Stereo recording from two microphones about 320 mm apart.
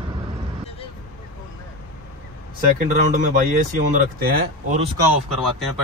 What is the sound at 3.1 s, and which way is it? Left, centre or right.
Speech, right.